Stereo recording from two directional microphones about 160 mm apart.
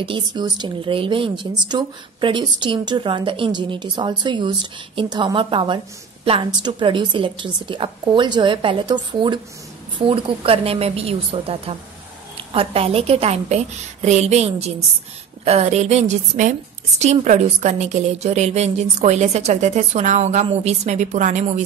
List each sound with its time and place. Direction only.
0.0 s a woman's voice: 30° right (ahead or behind); by 21.6 s 50° right (ahead or behind)